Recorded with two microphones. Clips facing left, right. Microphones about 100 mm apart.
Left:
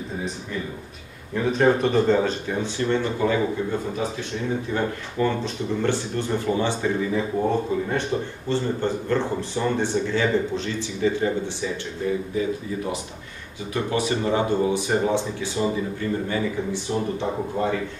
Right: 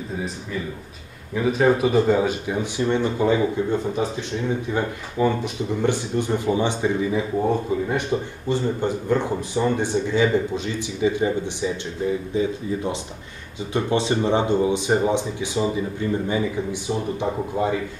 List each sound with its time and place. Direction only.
1.3 s speech: 5° right (ahead or behind)
4.7 s speech: 15° right (ahead or behind)